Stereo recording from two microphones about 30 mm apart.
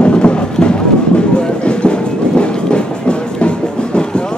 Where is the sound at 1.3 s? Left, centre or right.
Left.